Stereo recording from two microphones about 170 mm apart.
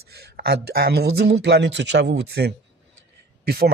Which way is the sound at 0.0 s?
65° right (ahead or behind).